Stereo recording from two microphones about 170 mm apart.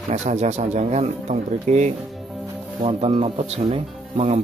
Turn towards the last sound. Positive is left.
turn(degrees=-40)  # may be behind; listen again after turning